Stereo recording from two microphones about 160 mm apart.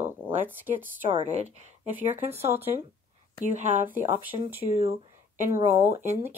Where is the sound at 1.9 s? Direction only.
10° right (ahead or behind).